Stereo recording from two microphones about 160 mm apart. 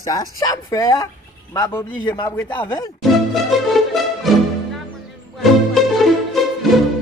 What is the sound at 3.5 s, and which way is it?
Music, centre (ahead or behind).